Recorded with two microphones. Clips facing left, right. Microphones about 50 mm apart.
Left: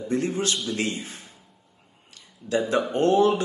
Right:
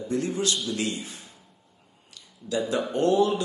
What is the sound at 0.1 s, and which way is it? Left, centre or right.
A man's voice, left.